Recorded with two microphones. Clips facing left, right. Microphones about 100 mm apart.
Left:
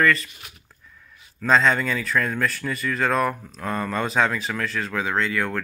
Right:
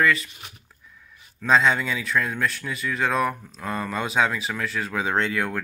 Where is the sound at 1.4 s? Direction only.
5° right (ahead or behind).